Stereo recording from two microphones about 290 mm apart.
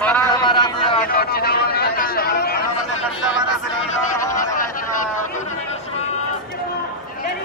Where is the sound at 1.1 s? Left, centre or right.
Left.